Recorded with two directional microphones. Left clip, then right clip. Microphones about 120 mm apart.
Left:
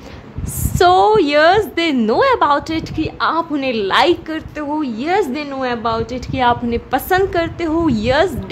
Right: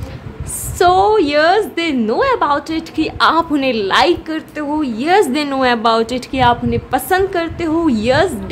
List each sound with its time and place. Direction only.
0.7 s a woman's voice: 15° left (ahead or behind)
3.0 s a woman's voice: 5° right (ahead or behind)
5.2 s a woman's voice: 15° right (ahead or behind)
6.3 s a woman's voice: 5° left (ahead or behind)